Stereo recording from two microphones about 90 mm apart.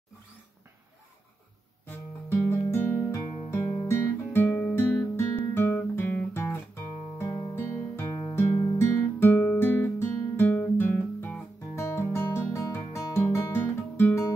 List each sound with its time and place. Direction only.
1.9 s music: 25° left (ahead or behind)
5.5 s guitar: 25° left (ahead or behind)
7.3 s music: 25° left (ahead or behind)
9.2 s guitar: 25° left (ahead or behind)
11.1 s music: 15° left (ahead or behind)
11.7 s music: 30° left (ahead or behind)